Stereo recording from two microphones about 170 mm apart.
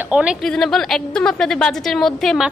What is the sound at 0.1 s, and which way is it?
A woman's voice, 5° right (ahead or behind).